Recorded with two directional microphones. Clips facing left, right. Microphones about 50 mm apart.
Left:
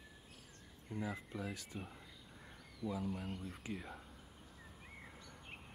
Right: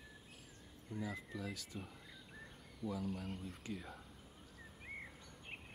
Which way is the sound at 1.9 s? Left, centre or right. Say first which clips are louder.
Even; centre.